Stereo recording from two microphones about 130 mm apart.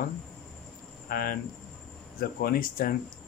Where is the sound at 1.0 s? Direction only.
90° left.